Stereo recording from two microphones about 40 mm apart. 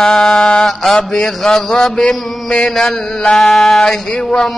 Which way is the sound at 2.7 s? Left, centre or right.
Centre.